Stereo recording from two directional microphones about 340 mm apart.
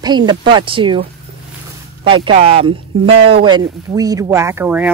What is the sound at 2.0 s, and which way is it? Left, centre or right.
Speech, centre.